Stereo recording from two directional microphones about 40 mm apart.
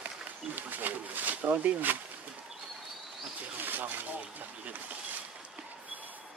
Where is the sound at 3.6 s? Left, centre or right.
Right.